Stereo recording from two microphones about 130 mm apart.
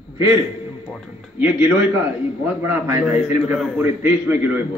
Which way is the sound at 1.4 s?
15° right (ahead or behind).